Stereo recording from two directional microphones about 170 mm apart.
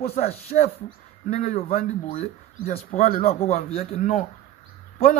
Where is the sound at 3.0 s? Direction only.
55° left (ahead or behind).